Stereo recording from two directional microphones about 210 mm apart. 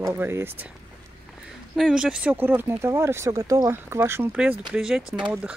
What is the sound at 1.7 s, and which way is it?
Speech, centre (ahead or behind).